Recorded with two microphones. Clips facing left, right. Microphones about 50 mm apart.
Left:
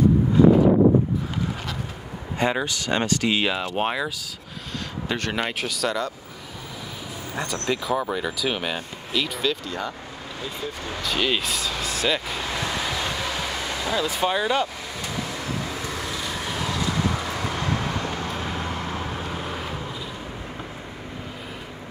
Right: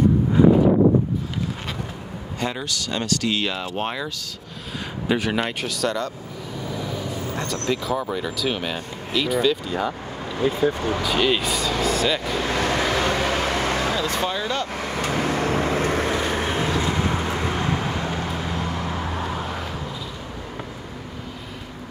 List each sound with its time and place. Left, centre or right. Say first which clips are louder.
0.4 s wind noise: even; right
2.4 s speech: left 4 dB; left
5.0 s speech: right 4 dB; centre
9.7 s speech: right 5 dB; centre
10.4 s speech: right 12 dB; right
11.0 s speech: even; centre
12.4 s vehicle: right 6 dB; right
14.2 s speech: left 3 dB; centre
14.8 s vehicle: right 7 dB; right; by 18.3 s centre
18.3 s vehicle: right 2 dB; centre